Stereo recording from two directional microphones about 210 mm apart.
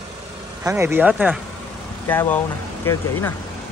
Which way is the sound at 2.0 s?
10° left (ahead or behind).